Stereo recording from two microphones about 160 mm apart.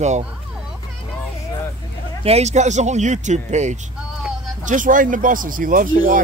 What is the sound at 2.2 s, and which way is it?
Speech, 40° right (ahead or behind).